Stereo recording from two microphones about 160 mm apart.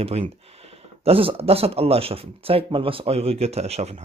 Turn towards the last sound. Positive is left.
turn(degrees=-40)  # may be behind; listen again after turning